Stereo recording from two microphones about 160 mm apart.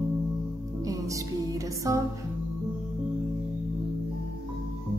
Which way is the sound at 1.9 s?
20° right (ahead or behind).